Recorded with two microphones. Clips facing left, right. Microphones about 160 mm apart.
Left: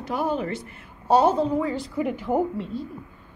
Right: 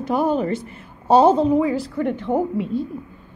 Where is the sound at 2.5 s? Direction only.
15° right (ahead or behind).